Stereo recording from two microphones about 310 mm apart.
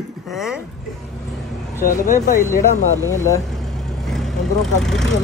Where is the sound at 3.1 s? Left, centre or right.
Centre.